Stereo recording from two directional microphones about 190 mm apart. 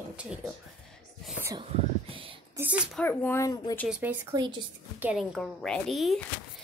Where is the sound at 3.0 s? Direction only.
10° left (ahead or behind).